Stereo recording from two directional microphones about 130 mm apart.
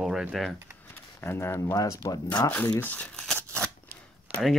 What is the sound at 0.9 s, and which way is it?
Speech, 20° left (ahead or behind).